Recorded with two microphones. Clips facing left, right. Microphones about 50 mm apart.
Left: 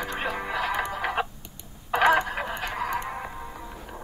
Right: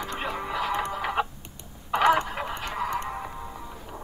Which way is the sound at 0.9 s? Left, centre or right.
Centre.